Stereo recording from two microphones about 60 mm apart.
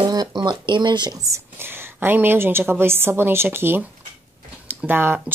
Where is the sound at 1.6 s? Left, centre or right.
Right.